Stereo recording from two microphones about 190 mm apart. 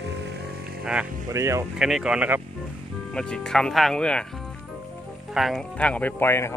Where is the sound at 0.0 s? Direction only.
65° right (ahead or behind).